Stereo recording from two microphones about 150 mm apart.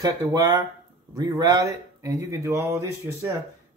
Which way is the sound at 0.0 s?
25° right (ahead or behind).